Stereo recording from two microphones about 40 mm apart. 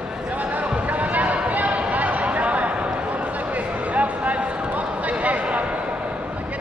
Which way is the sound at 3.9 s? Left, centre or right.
Right.